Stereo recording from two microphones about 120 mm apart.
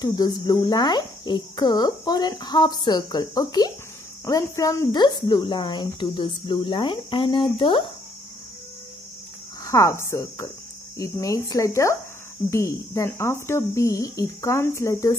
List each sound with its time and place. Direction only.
0.0 s insect: 30° left (ahead or behind)
9.7 s speech: 25° left (ahead or behind)